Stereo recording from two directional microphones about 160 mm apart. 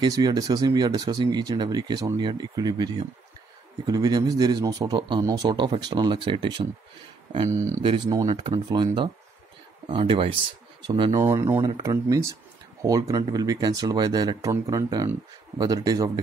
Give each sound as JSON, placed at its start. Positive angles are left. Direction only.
{"t": 0.0, "sound": "speech", "side_deg": -25}
{"t": 7.4, "sound": "speech", "side_deg": -20}
{"t": 7.8, "sound": "speech", "side_deg": -30}
{"t": 11.1, "sound": "speech", "side_deg": -20}